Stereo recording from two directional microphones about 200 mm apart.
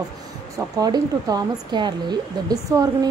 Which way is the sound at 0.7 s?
20° right (ahead or behind).